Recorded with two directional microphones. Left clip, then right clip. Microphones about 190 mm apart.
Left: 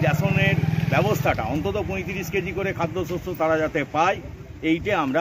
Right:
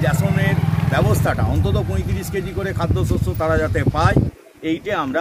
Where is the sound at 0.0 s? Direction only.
25° right (ahead or behind).